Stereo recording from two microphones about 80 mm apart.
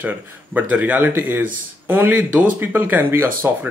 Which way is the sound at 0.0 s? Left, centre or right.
Right.